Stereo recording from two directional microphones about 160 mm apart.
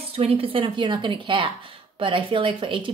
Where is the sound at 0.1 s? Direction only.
35° right (ahead or behind).